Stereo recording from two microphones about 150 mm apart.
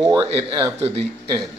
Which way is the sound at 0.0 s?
25° right (ahead or behind).